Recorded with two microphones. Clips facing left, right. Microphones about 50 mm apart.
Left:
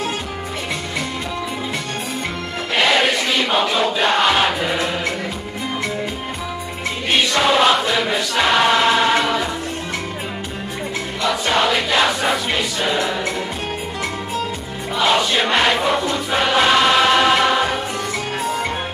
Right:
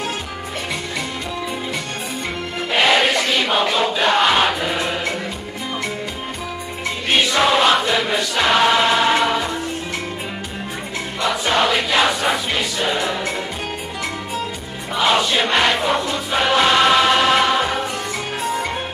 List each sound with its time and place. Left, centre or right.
2.7 s a sound: centre
7.1 s music: centre
11.2 s choir: centre
12.3 s a sound: centre
15.0 s music: centre
15.5 s crowd: centre
16.7 s music: centre